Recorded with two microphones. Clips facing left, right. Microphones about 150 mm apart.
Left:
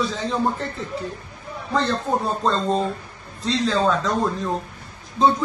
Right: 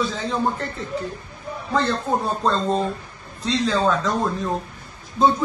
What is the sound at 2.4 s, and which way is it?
Speech, centre (ahead or behind).